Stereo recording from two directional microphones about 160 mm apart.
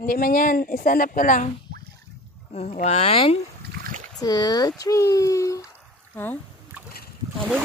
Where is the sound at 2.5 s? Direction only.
45° left (ahead or behind).